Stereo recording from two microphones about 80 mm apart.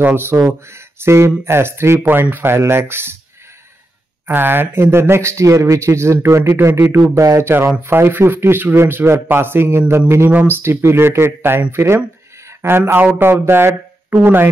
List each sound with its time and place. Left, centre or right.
0.0 s speech: right
4.3 s speech: right